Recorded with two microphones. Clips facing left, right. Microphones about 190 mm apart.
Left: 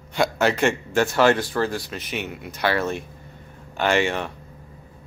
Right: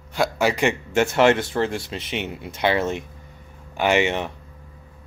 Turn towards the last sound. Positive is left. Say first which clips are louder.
# right 1 dB
turn(degrees=-20)  # may be behind; listen again after turning